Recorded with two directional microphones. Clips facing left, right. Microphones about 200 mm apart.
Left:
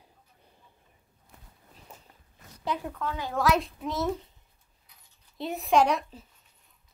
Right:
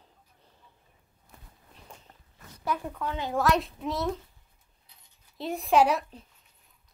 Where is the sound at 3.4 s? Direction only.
Centre (ahead or behind).